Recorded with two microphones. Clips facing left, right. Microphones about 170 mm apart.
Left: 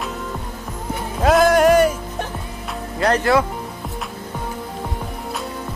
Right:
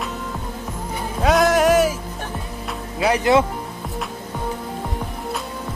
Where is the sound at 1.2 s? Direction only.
Centre (ahead or behind).